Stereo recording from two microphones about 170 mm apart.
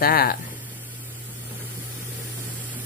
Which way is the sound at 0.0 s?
60° left (ahead or behind).